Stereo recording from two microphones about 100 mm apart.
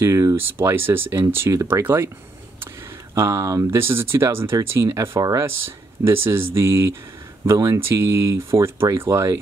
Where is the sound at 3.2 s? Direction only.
35° right (ahead or behind).